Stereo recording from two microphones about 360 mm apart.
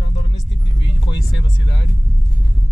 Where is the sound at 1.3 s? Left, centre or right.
Left.